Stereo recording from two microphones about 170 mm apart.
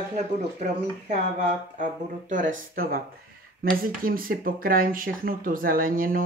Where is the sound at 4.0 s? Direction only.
55° right (ahead or behind).